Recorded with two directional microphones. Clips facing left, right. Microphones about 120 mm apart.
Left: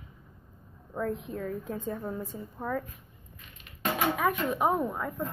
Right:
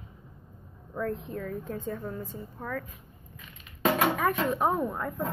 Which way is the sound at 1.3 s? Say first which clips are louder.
Even; 10° left (ahead or behind).